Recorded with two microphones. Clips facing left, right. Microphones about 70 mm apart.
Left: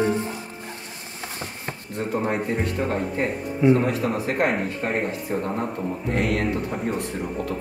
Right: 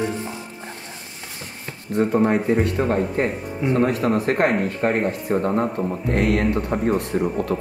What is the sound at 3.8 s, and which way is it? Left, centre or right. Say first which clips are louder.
Speech: right 4 dB; right.